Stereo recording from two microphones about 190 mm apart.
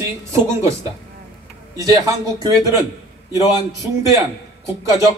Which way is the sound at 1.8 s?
20° right (ahead or behind).